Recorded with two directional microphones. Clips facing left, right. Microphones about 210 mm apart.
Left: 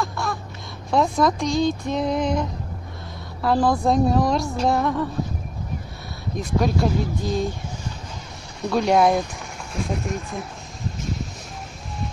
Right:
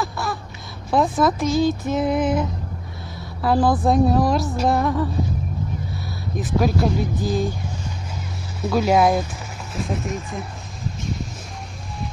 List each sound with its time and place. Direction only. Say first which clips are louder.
0.0 s a sound: right 1 dB; 5° right (ahead or behind)
0.8 s speech: right 1 dB; centre (ahead or behind)
6.3 s speech: right 1 dB; 5° right (ahead or behind)
8.5 s speech: right 1 dB; 5° right (ahead or behind)